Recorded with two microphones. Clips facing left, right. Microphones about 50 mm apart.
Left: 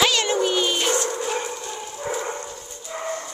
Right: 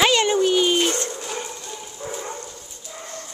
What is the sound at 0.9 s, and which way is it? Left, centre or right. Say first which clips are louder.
Dog: left 5 dB; left.